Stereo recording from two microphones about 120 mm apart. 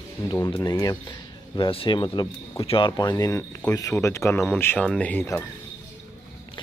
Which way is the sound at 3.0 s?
35° left (ahead or behind).